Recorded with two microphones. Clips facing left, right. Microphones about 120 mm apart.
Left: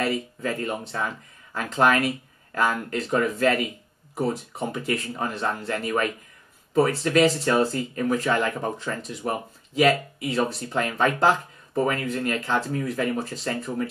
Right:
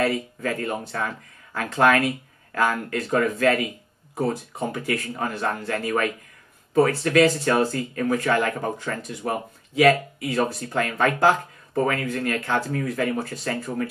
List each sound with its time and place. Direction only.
0.0 s speech: 20° left (ahead or behind)
4.7 s speech: 25° left (ahead or behind)